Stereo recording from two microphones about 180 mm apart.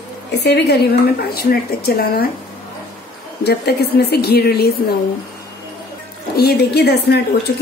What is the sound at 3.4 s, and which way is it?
Speech, 65° left (ahead or behind).